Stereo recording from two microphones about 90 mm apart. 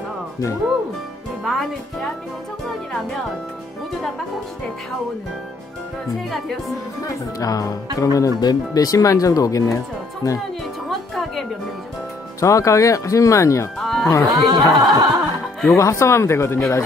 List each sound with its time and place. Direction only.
1.4 s speech: 5° left (ahead or behind)
7.3 s speech: 40° left (ahead or behind)
10.9 s music: centre (ahead or behind)
12.4 s speech: 35° left (ahead or behind)
13.7 s music: centre (ahead or behind)
14.3 s speech: 40° right (ahead or behind)
14.8 s music: 40° right (ahead or behind)
15.7 s speech: 35° left (ahead or behind)